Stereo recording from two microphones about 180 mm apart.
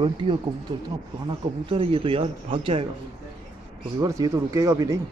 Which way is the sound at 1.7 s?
30° right (ahead or behind).